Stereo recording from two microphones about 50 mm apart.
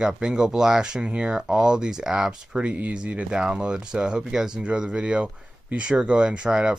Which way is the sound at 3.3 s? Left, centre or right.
Centre.